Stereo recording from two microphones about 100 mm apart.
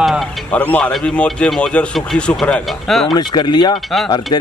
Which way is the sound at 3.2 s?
50° left (ahead or behind).